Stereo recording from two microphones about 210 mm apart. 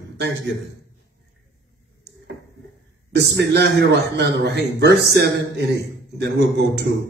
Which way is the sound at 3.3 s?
55° right (ahead or behind).